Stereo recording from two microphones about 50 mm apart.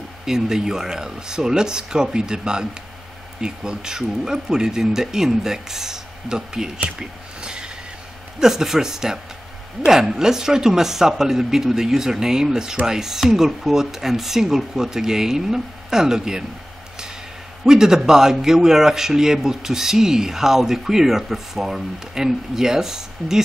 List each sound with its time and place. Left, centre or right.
0.2 s speech: centre
7.0 s a sound: centre
8.4 s speech: centre
17.6 s speech: centre